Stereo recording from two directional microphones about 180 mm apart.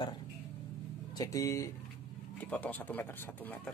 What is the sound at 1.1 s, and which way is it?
Speech, 20° left (ahead or behind).